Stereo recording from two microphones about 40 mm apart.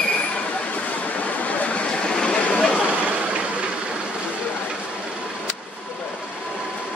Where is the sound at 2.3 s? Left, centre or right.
Left.